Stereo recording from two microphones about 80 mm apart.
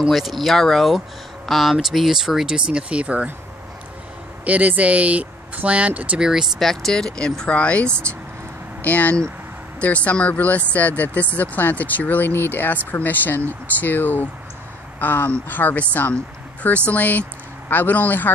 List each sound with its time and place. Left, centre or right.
0.1 s speech: centre
4.5 s speech: centre
6.6 s speech: centre; by 18.3 s left